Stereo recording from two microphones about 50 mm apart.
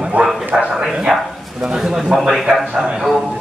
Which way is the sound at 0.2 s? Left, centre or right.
Right.